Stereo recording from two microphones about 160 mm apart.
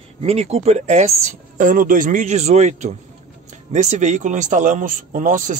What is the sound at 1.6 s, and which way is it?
Speech, 60° right (ahead or behind).